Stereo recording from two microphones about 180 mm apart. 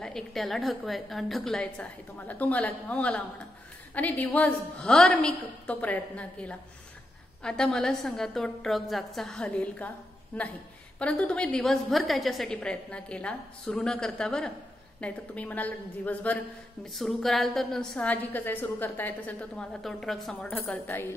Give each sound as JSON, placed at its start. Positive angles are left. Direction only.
{"t": 0.0, "sound": "a woman's voice", "side_deg": 0}